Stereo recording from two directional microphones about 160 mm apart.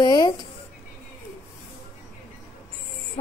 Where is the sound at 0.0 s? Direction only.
25° left (ahead or behind).